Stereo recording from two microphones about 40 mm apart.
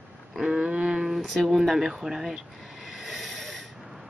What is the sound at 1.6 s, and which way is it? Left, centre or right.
Speech, centre.